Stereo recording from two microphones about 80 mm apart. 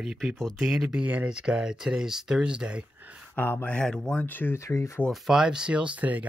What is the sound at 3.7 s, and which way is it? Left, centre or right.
Speech, centre.